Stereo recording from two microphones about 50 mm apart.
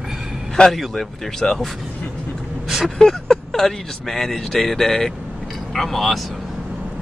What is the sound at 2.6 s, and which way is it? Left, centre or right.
Vehicle, centre.